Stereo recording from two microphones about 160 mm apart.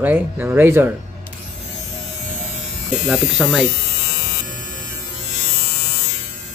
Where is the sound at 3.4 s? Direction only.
Centre (ahead or behind).